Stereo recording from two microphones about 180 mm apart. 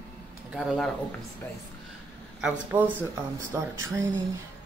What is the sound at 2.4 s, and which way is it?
Speech, 10° right (ahead or behind).